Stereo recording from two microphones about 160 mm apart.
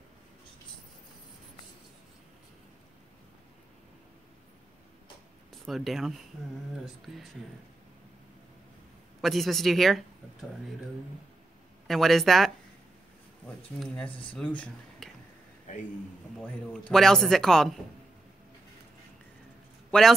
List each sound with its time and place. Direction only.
5.5 s speech: centre (ahead or behind)
9.2 s speech: centre (ahead or behind)
11.9 s speech: centre (ahead or behind)
14.0 s speech: 35° left (ahead or behind)
14.3 s speech: 10° left (ahead or behind)
15.7 s a man's voice: 50° left (ahead or behind)
16.9 s speech: 5° left (ahead or behind)
19.9 s a man's voice: centre (ahead or behind)